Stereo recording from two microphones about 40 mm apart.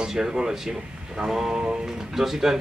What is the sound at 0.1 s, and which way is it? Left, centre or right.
A man's voice, centre.